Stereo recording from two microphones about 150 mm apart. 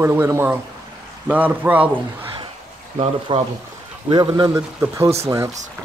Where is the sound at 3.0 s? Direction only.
40° right (ahead or behind); by 5.5 s 20° right (ahead or behind).